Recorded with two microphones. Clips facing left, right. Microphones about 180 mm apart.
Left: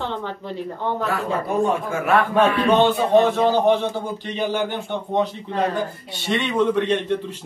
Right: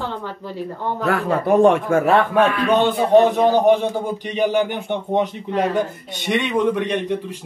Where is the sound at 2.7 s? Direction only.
15° right (ahead or behind).